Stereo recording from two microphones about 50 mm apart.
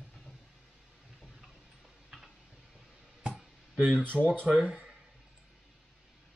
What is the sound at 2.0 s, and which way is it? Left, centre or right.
Tick-tock, centre.